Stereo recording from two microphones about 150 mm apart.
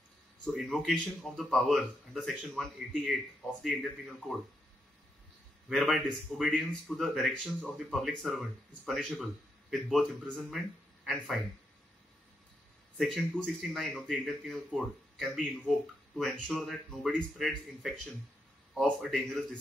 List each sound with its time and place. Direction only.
0.5 s speech: centre (ahead or behind)
5.7 s speech: centre (ahead or behind)
12.9 s speech: 5° left (ahead or behind)